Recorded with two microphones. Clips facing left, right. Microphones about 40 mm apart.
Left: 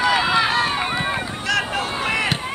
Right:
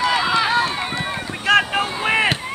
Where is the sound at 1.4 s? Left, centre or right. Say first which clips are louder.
Right 7 dB; right.